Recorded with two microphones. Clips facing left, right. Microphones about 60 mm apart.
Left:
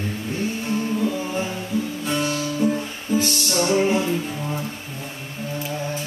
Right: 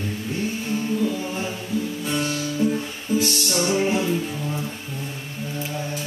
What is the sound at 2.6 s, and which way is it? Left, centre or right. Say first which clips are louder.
Music: left 1 dB; left.